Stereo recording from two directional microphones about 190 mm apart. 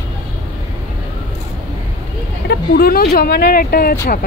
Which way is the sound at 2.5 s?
50° left (ahead or behind).